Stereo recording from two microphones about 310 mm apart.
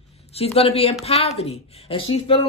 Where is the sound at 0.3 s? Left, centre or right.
Centre.